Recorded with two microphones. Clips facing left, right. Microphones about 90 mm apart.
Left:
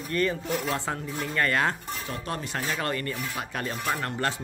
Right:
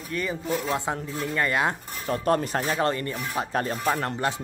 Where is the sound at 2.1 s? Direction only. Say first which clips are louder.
Right 11 dB; 40° right (ahead or behind).